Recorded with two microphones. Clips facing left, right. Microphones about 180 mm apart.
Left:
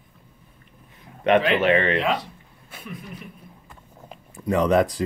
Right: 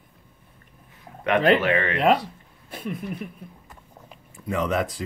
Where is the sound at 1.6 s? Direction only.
25° left (ahead or behind).